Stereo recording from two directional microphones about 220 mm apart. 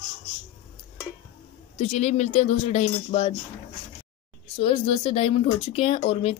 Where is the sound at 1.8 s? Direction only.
30° left (ahead or behind).